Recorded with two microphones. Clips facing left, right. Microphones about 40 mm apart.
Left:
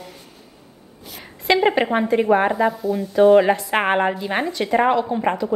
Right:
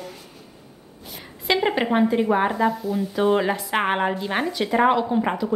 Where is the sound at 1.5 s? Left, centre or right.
Centre.